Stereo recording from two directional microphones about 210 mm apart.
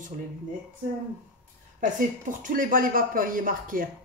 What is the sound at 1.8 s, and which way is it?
Speech, 40° right (ahead or behind).